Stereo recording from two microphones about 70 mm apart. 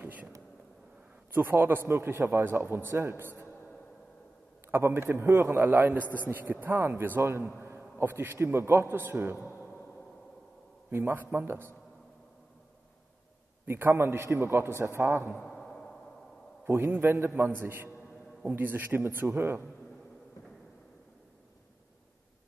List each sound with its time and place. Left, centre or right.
0.0 s a sound: right
1.3 s a man's voice: right
4.6 s a man's voice: right
10.9 s a man's voice: right
13.7 s a man's voice: right
15.0 s speech: right
15.3 s a sound: centre
16.9 s a man's voice: right